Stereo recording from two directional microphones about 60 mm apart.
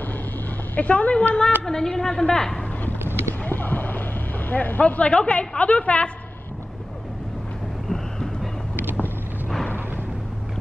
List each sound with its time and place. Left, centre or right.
0.7 s speech: left
1.7 s a woman's voice: centre
3.0 s clip-clop: right
3.4 s a sound: left
7.9 s vehicle: centre